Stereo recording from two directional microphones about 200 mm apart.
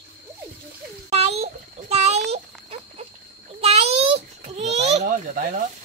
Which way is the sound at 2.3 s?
30° right (ahead or behind).